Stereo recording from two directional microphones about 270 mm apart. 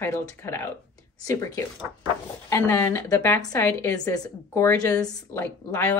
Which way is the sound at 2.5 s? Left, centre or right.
Centre.